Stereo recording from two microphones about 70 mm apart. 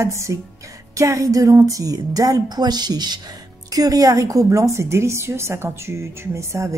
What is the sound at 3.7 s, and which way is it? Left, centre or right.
A woman's voice, right.